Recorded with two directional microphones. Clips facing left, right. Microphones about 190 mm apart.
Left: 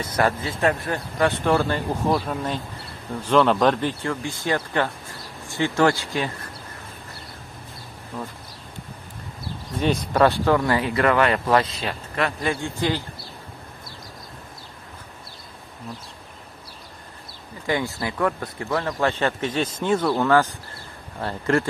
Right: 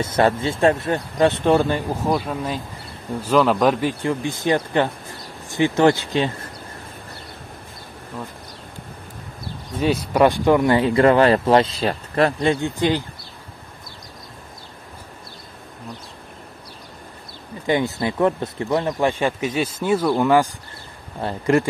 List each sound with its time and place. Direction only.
0.0 s speech: 25° right (ahead or behind)
2.0 s speech: centre (ahead or behind); by 6.3 s 20° right (ahead or behind)
9.8 s speech: 10° right (ahead or behind); by 12.4 s 35° right (ahead or behind)
12.4 s speech: 20° right (ahead or behind)
17.6 s speech: 20° right (ahead or behind)